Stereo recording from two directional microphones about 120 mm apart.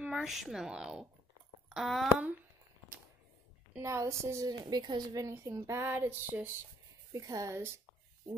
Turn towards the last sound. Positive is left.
turn(degrees=-20)  # may be behind; listen again after turning